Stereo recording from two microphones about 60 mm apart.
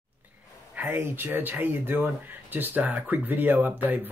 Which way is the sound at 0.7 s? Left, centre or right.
Right.